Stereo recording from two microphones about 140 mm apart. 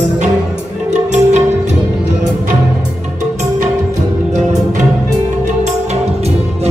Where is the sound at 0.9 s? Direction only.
55° right (ahead or behind).